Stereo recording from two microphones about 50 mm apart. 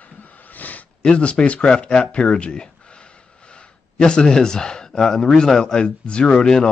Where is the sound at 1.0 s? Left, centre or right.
Left.